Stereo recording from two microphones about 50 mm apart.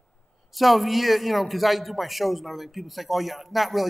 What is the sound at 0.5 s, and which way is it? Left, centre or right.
A man's voice, centre.